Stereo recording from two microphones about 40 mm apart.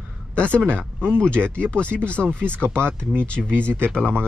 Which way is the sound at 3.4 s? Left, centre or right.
Right.